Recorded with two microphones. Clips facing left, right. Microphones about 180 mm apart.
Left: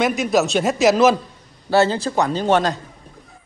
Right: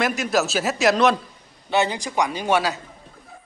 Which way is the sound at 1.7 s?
15° right (ahead or behind).